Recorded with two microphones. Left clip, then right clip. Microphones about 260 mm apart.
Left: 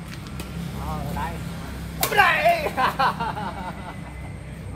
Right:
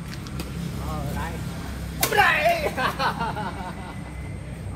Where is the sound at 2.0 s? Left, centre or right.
Left.